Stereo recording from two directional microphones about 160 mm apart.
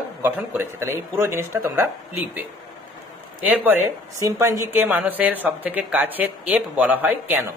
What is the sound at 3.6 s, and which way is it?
Speech, 15° right (ahead or behind).